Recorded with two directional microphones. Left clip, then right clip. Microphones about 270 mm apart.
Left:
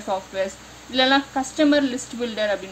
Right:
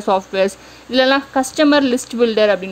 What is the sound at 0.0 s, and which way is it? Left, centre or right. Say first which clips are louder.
Speech: right 9 dB; right.